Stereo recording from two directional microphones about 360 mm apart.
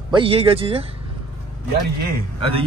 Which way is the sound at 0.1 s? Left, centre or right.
Centre.